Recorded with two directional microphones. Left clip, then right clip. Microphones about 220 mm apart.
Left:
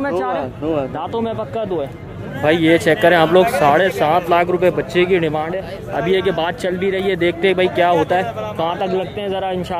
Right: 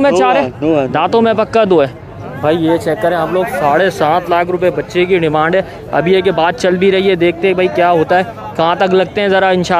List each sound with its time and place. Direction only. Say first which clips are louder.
0.0 s speech: right 10 dB; 45° right (ahead or behind)
2.4 s speech: right 1 dB; centre (ahead or behind)
3.3 s speech: left 1 dB; 15° left (ahead or behind)
3.7 s speech: right 3 dB; 5° right (ahead or behind)
5.3 s speech: right 9 dB; 20° right (ahead or behind)